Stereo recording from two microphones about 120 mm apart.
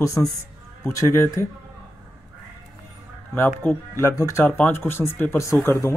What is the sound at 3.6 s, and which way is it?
Speech, 25° left (ahead or behind).